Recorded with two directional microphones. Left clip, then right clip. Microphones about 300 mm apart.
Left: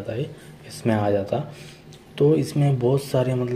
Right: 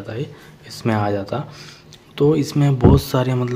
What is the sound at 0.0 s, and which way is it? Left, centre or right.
Speech, centre.